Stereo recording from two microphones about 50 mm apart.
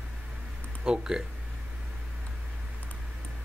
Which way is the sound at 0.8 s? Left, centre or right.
Centre.